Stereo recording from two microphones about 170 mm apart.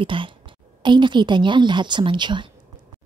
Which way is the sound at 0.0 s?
30° right (ahead or behind).